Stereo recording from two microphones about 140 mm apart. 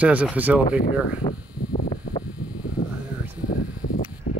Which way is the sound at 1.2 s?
80° left.